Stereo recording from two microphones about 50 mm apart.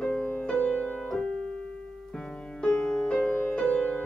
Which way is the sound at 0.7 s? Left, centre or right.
Centre.